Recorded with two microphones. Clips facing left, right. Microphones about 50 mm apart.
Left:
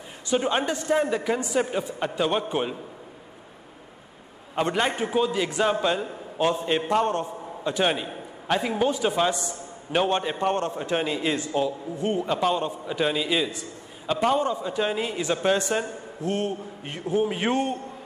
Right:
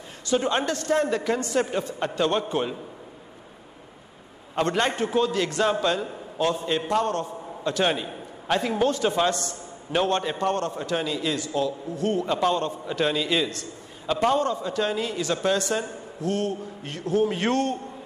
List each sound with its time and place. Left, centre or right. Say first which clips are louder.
0.3 s a man's voice: even; centre
4.6 s a man's voice: right 1 dB; centre